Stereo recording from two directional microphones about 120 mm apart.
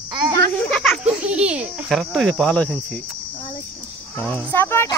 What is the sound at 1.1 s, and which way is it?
Baby laughter, 10° right (ahead or behind).